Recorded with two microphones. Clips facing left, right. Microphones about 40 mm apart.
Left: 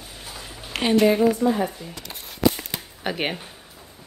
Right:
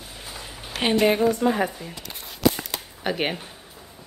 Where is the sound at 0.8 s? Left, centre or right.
Right.